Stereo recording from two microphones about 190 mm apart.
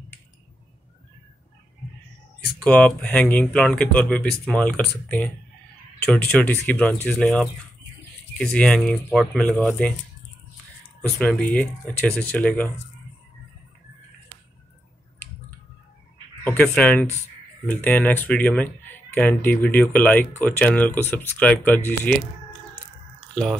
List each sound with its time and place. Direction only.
2.6 s speech: 5° left (ahead or behind)
11.0 s speech: 5° left (ahead or behind)
16.4 s speech: 5° left (ahead or behind)